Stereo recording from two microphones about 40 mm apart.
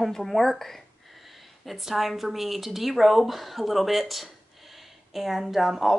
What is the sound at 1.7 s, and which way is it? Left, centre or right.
Speech, centre.